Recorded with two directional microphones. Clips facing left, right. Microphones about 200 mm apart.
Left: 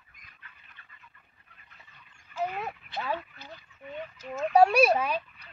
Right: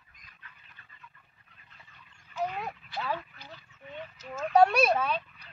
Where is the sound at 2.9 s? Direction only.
25° left (ahead or behind).